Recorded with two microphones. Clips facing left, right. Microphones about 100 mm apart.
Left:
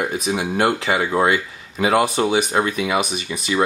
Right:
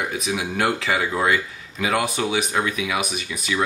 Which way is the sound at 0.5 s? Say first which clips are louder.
Left 3 dB; 30° left (ahead or behind).